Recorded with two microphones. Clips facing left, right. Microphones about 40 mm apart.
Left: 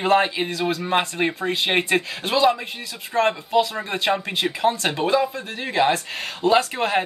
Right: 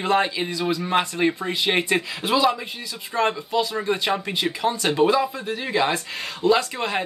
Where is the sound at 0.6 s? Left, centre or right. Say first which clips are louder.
Right 1 dB; left.